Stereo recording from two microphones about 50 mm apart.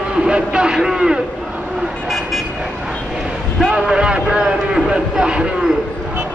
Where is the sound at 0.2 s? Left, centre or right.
Centre.